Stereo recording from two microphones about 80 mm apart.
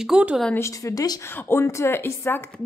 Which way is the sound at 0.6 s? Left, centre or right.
Left.